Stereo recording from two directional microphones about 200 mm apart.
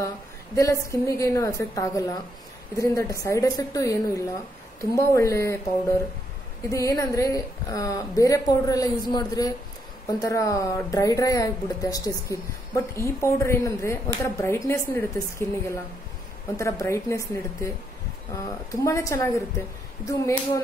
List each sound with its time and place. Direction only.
0.6 s speech: 15° left (ahead or behind)